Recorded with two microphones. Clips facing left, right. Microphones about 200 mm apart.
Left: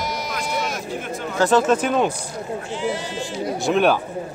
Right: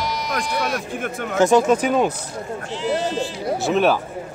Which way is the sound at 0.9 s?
55° right (ahead or behind).